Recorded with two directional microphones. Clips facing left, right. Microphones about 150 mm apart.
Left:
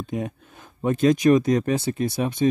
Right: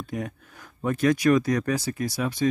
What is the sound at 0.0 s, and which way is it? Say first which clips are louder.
Speech: left 3 dB; 20° left (ahead or behind).